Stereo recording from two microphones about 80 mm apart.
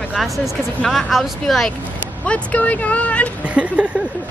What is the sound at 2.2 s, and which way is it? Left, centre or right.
Speech, centre.